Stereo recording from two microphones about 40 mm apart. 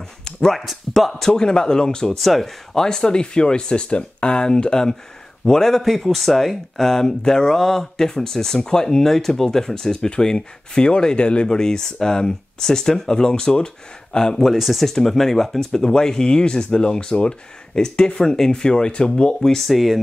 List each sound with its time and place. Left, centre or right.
0.2 s a sound: centre
0.6 s speech: centre
1.2 s speech: centre
2.1 s speech: centre
2.7 s speech: centre
10.0 s speech: left
14.6 s speech: centre
14.9 s speech: centre
18.9 s speech: left
19.4 s speech: centre
19.7 s speech: centre